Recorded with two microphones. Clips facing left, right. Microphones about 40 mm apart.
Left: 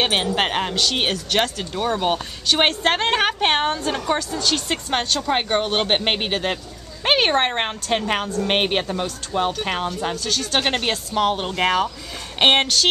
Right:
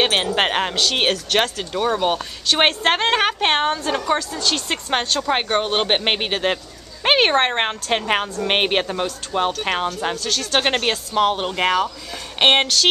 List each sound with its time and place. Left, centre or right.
0.0 s a woman's voice: centre
10.1 s a woman's voice: centre